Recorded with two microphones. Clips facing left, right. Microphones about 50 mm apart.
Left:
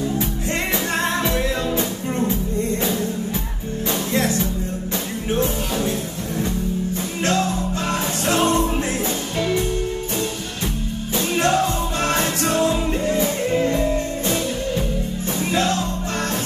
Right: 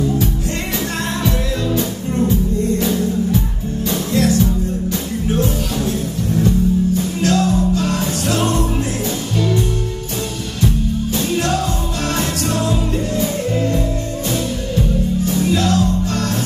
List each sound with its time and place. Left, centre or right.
4.1 s music: left
7.0 s music: left
11.1 s music: left
15.2 s music: left